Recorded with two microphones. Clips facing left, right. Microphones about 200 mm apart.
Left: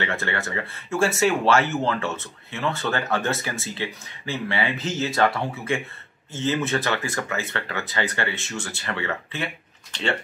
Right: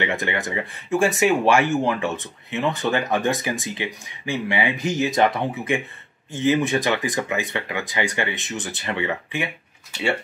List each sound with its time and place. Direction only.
0.0 s speech: 15° right (ahead or behind)